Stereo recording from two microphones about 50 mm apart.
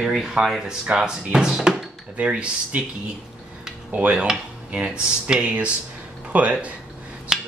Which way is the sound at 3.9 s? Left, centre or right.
Right.